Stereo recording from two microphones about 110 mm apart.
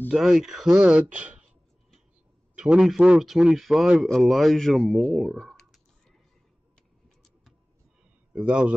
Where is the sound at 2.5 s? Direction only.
5° right (ahead or behind).